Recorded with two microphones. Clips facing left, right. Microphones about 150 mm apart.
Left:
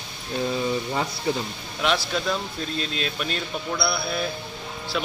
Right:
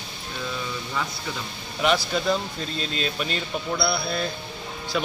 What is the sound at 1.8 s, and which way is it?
Speech, centre (ahead or behind).